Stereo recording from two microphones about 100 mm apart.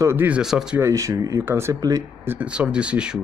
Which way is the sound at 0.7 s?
30° right (ahead or behind).